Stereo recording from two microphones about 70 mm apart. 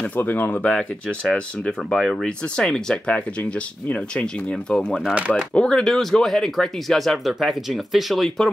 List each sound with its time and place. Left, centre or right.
0.0 s speech: left; by 8.5 s centre